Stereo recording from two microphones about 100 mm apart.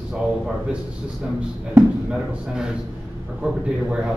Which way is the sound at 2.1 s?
5° right (ahead or behind).